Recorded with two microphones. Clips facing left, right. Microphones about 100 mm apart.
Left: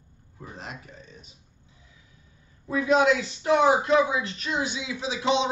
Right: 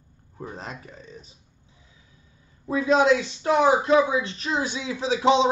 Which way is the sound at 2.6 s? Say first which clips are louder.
Right 1 dB; 30° right (ahead or behind).